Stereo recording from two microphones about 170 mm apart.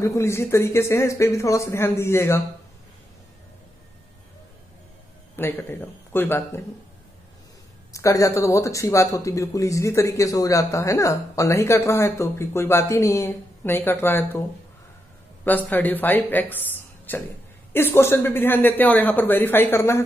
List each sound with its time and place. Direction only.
0.0 s speech: 15° left (ahead or behind)
5.3 s speech: 10° left (ahead or behind)
7.9 s speech: 20° left (ahead or behind)
15.4 s speech: 10° left (ahead or behind)